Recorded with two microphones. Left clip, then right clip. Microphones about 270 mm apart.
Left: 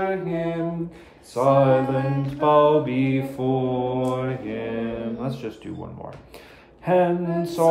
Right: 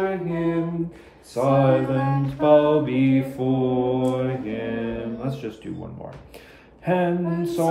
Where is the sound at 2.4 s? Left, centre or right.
Centre.